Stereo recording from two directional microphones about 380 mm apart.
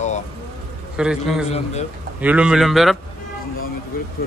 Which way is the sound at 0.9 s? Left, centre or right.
Centre.